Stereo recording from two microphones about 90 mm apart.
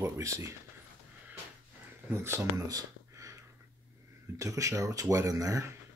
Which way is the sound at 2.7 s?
40° right (ahead or behind).